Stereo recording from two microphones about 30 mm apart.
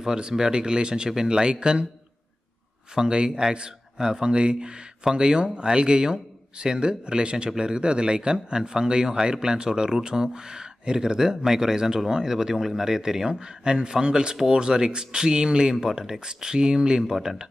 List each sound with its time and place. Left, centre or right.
0.0 s speech: right
2.9 s speech: right